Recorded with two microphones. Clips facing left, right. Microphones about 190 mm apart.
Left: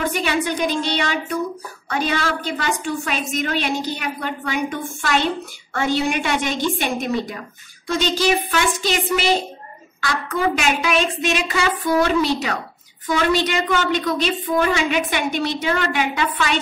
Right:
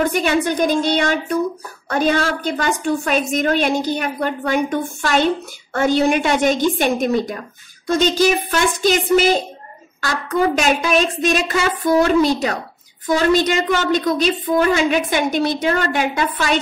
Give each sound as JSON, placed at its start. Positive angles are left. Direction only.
{"t": 0.0, "sound": "a woman's voice", "side_deg": -45}
{"t": 8.0, "sound": "a woman's voice", "side_deg": -45}